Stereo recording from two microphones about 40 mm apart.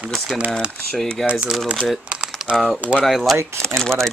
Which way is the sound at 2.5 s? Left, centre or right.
Right.